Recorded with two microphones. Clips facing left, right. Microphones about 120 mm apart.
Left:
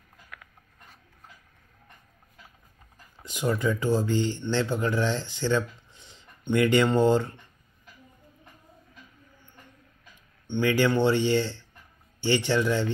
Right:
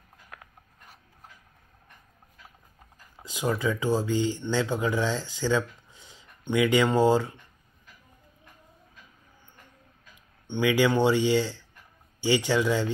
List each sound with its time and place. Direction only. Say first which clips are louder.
0.3 s filing: right 1 dB; 30° right (ahead or behind)
3.2 s speech: left 1 dB; 10° right (ahead or behind)
10.4 s speech: even; 15° right (ahead or behind)